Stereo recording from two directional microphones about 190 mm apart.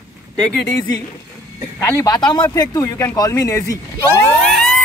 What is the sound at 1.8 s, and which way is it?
Speech, 15° left (ahead or behind).